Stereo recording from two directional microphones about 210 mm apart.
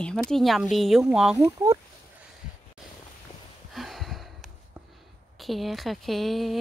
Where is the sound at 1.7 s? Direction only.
15° right (ahead or behind).